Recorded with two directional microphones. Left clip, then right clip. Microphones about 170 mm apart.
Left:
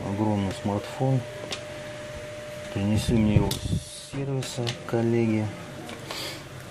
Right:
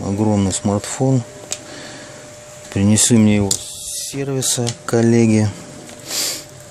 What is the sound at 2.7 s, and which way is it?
Speech, 55° right (ahead or behind).